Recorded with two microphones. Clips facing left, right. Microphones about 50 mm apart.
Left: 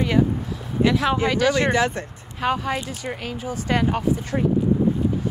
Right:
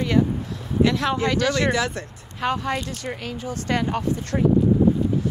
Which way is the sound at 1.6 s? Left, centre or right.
Left.